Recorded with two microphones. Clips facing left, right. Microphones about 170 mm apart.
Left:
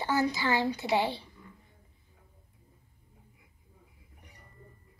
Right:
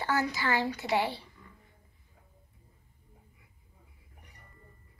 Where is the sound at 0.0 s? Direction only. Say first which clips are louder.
Left 2 dB; 25° left (ahead or behind).